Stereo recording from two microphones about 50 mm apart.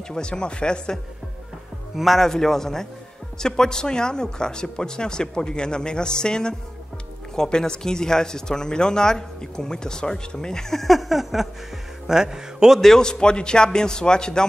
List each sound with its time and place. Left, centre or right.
0.1 s speech: centre
2.0 s speech: centre
12.1 s music: centre
12.8 s speech: centre